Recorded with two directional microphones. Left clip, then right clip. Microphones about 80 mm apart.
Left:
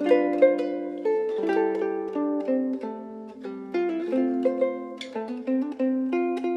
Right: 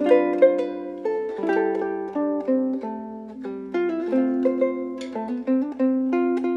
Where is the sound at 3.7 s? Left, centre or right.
Left.